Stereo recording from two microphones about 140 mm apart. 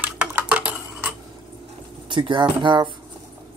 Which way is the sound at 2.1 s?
35° right (ahead or behind).